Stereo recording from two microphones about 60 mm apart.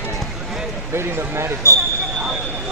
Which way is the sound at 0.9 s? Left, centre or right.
Right.